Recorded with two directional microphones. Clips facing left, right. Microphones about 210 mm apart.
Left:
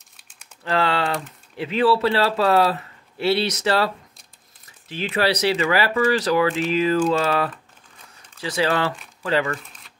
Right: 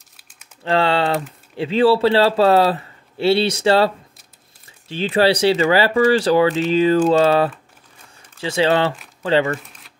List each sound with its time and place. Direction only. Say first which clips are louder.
0.7 s speech: right 4 dB; 30° right (ahead or behind)
9.7 s crumpling: right 2 dB; 5° right (ahead or behind)